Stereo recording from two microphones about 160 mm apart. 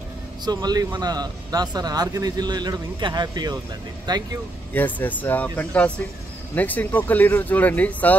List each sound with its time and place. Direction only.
0.5 s speech: 25° right (ahead or behind)
4.7 s speech: 10° left (ahead or behind)